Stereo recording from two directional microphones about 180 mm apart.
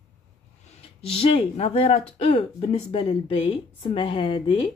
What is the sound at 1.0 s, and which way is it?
Speech, 30° left (ahead or behind).